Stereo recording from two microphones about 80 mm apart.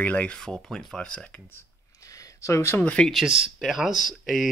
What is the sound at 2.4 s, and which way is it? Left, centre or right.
Speech, left.